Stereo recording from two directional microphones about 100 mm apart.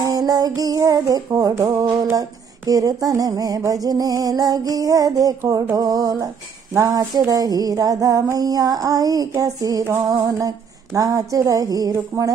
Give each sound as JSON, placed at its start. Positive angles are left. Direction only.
{"t": 0.0, "sound": "music", "side_deg": -40}
{"t": 5.4, "sound": "a sound", "side_deg": -25}
{"t": 5.8, "sound": "music", "side_deg": -40}